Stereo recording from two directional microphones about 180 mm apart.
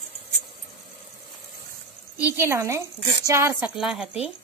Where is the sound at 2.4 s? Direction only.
15° right (ahead or behind).